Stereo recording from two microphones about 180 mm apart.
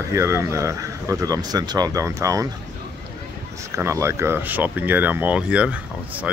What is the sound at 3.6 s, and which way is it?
Speech, 15° right (ahead or behind).